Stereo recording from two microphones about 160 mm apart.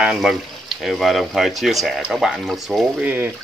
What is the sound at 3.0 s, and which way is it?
Speech, 10° right (ahead or behind).